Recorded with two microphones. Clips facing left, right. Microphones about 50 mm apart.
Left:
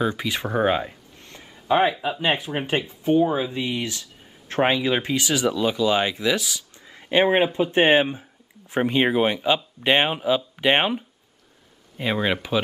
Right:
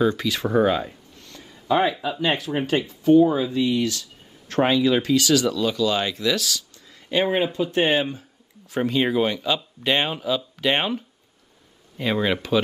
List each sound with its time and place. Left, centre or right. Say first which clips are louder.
0.0 s speech: right 3 dB; centre